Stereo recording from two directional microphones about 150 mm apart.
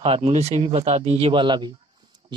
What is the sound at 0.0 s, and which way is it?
Speech, 40° right (ahead or behind).